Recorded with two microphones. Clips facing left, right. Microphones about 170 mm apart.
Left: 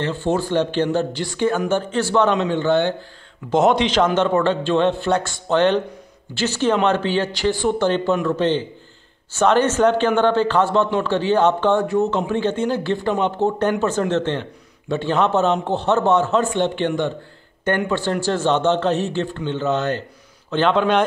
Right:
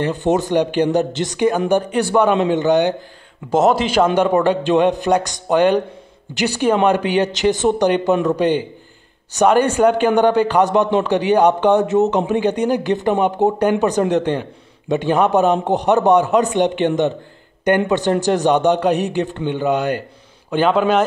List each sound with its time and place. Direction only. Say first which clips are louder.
0.0 s speech: right 4 dB; 20° right (ahead or behind)
3.4 s speech: right 1 dB; 5° right (ahead or behind)